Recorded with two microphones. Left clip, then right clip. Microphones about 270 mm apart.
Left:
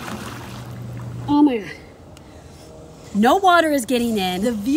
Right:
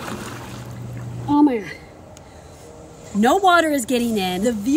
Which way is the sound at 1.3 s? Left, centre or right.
Centre.